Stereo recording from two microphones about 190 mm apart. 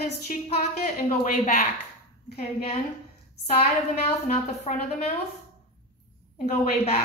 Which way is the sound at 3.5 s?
30° left (ahead or behind).